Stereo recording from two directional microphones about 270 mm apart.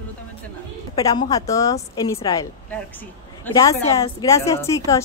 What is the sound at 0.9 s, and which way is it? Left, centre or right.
Speech, centre.